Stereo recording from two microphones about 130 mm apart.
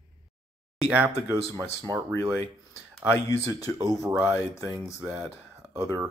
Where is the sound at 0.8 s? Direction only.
15° right (ahead or behind).